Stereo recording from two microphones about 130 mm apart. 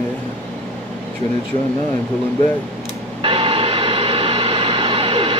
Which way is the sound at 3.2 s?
45° right (ahead or behind).